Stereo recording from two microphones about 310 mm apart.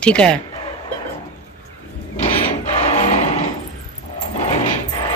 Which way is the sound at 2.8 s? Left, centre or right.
Left.